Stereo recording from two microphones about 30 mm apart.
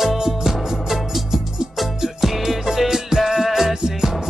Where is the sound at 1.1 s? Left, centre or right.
Centre.